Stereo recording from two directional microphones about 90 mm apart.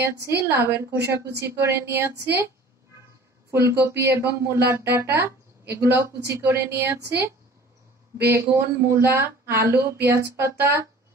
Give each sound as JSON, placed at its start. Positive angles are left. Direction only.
{"t": 0.0, "sound": "speech", "side_deg": -25}
{"t": 3.5, "sound": "speech", "side_deg": -30}
{"t": 8.3, "sound": "speech", "side_deg": -30}